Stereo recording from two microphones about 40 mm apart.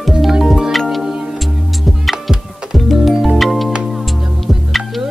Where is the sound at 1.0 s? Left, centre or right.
Centre.